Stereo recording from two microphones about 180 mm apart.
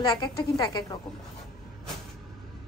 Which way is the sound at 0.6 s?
20° left (ahead or behind).